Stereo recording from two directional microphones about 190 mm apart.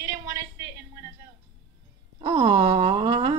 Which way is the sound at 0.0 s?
60° right (ahead or behind).